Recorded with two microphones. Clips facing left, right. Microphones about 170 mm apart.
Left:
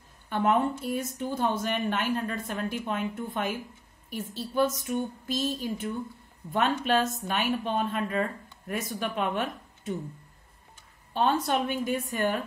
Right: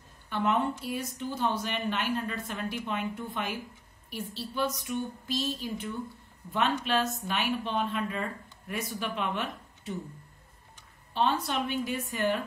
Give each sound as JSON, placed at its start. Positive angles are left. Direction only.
{"t": 0.3, "sound": "speech", "side_deg": 50}
{"t": 11.1, "sound": "speech", "side_deg": 50}